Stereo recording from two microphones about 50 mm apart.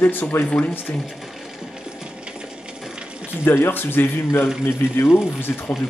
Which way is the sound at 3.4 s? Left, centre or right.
Left.